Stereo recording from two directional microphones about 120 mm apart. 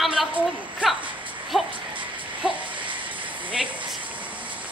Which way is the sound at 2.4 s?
10° right (ahead or behind).